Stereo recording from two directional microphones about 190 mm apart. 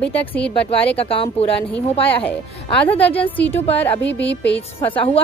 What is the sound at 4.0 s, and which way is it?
Speech, 70° left (ahead or behind).